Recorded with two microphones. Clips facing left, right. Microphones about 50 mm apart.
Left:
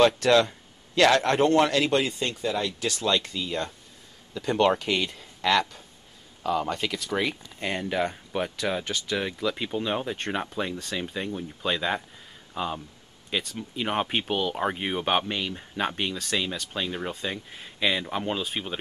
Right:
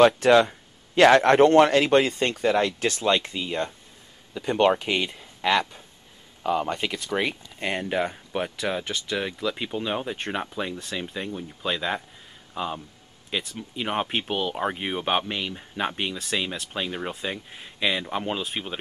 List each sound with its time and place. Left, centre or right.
0.0 s speech: right
1.2 s speech: right
3.0 s speech: right; by 18.8 s centre